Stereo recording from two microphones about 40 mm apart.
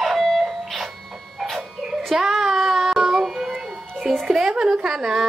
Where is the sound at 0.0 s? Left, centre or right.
Centre.